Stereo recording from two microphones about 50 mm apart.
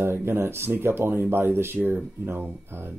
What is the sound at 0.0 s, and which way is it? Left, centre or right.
Speech, right.